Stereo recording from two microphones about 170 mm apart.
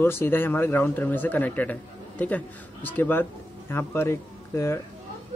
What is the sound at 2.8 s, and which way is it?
Speech, 10° left (ahead or behind).